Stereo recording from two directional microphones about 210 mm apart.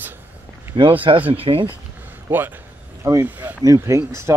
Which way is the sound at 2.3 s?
10° right (ahead or behind).